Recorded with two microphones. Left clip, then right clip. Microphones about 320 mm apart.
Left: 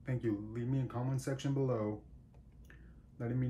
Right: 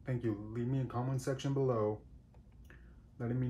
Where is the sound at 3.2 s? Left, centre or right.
Centre.